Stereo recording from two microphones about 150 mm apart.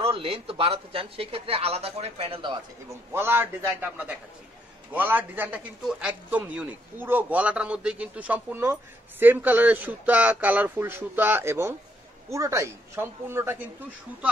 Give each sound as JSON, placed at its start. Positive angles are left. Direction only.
{"t": 0.0, "sound": "speech", "side_deg": -40}
{"t": 2.9, "sound": "a man's voice", "side_deg": -15}